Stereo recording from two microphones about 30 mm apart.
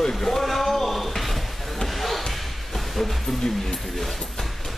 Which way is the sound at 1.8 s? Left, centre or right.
Centre.